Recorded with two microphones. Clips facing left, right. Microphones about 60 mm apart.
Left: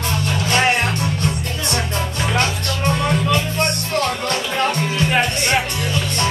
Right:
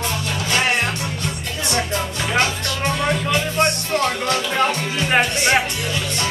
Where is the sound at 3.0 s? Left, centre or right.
Centre.